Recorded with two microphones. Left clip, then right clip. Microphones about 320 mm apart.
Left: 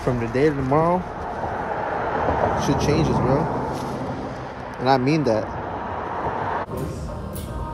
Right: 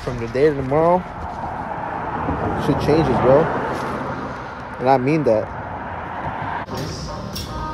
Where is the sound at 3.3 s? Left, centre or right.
Right.